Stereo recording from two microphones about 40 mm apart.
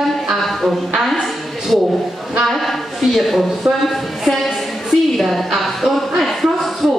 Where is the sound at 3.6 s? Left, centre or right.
Centre.